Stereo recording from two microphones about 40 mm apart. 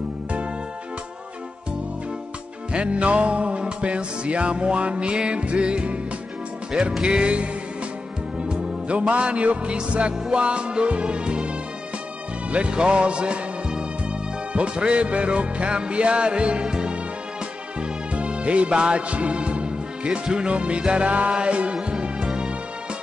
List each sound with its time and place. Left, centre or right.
2.7 s music: right
7.0 s music: right
8.5 s music: right